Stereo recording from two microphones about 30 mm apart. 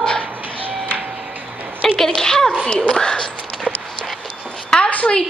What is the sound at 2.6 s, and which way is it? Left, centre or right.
Speech, left.